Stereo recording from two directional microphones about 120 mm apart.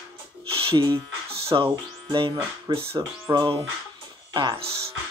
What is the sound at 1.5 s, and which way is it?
Speech, 45° right (ahead or behind).